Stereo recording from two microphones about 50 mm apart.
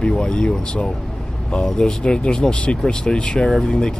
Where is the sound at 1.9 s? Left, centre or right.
Left.